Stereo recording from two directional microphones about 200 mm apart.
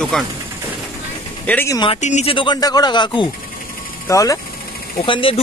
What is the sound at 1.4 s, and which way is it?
Speech, 10° left (ahead or behind).